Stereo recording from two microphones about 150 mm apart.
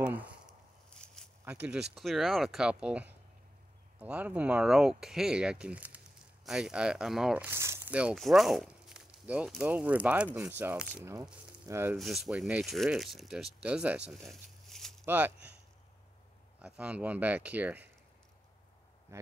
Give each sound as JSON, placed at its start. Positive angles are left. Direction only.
{"t": 0.0, "sound": "a sound", "side_deg": -10}
{"t": 0.8, "sound": "a sound", "side_deg": 5}
{"t": 1.4, "sound": "speech", "side_deg": -10}
{"t": 12.0, "sound": "speech", "side_deg": 0}
{"t": 15.0, "sound": "speech", "side_deg": -15}
{"t": 16.6, "sound": "speech", "side_deg": -10}